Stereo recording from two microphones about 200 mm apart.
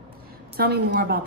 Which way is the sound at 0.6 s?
50° right (ahead or behind).